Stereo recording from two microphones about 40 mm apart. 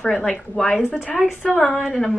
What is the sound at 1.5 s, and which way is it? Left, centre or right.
Speech, centre.